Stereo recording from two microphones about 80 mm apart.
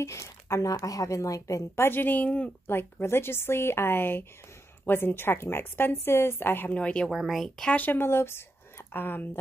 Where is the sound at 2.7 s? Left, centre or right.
Left.